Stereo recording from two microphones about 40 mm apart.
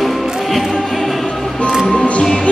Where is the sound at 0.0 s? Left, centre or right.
Centre.